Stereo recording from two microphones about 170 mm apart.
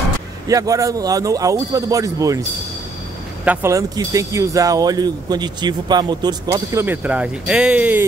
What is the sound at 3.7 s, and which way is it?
Speech, 20° right (ahead or behind).